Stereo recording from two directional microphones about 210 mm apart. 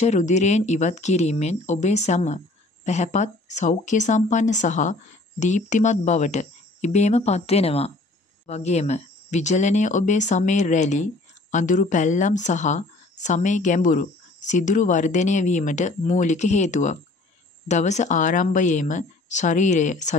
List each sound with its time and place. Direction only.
0.0 s a woman's voice: 35° left (ahead or behind)